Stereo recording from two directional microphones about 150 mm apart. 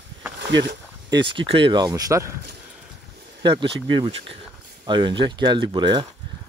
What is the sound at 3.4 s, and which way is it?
Speech, 30° right (ahead or behind).